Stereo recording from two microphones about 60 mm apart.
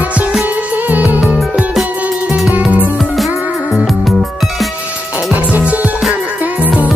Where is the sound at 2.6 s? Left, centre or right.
Right.